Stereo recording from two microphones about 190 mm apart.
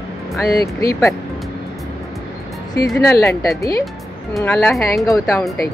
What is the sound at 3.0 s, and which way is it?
Speech, 15° left (ahead or behind).